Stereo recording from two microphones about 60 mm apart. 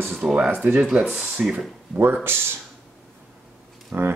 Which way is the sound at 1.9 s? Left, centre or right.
Right.